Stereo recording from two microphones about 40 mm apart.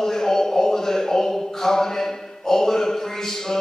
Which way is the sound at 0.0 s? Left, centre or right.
Centre.